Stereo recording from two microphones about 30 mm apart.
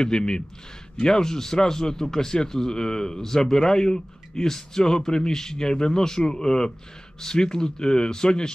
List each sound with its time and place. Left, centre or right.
0.0 s a man's voice: left